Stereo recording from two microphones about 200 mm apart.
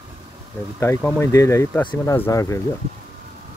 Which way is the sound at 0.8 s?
10° left (ahead or behind).